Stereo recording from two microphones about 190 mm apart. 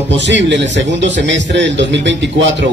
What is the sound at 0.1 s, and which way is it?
A man's voice, 70° right (ahead or behind).